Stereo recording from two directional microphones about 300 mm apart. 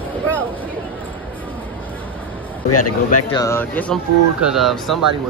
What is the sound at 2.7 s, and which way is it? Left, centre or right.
Speech, left.